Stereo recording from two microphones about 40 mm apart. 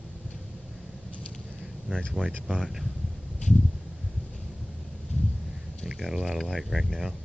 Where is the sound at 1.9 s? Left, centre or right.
Centre.